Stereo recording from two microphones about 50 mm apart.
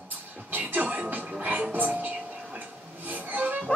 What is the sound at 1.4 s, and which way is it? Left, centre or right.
Speech, right.